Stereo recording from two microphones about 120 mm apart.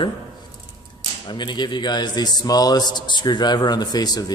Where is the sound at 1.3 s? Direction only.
40° left (ahead or behind).